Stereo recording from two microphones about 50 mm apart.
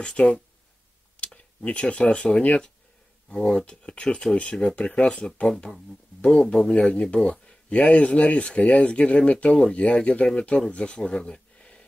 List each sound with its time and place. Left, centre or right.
0.0 s speech: left
6.7 s speech: left
11.0 s a sound: centre